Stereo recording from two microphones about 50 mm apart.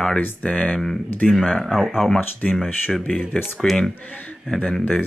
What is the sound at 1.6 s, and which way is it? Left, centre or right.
Speech, centre.